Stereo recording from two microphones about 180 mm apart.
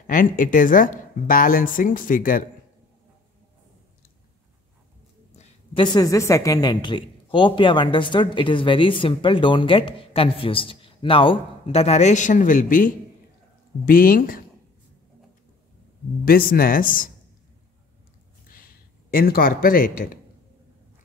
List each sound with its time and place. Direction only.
0.0 s speech: 50° left (ahead or behind)
5.3 s a sound: 35° left (ahead or behind)
5.9 s speech: 15° left (ahead or behind); by 14.4 s 50° left (ahead or behind)
16.3 s speech: 55° left (ahead or behind)
18.5 s speech: 55° left (ahead or behind)